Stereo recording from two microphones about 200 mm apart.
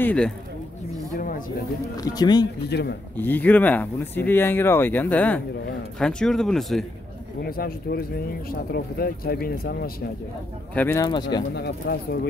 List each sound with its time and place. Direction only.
0.0 s speech: 5° left (ahead or behind)
1.1 s a sound: 45° left (ahead or behind)
2.0 s speech: 20° left (ahead or behind)
2.7 s a man's voice: 55° left (ahead or behind)
3.2 s speech: 10° left (ahead or behind)
7.4 s speech: 50° left (ahead or behind)
10.7 s speech: 10° left (ahead or behind)
11.5 s speech: 55° left (ahead or behind)